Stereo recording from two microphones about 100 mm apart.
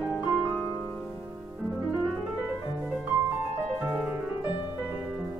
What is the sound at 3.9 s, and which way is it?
Music, 20° right (ahead or behind).